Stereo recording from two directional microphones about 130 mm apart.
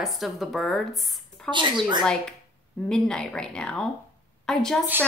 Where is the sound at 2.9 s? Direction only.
5° left (ahead or behind).